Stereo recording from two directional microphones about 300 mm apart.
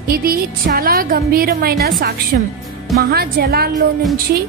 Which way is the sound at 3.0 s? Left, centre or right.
Right.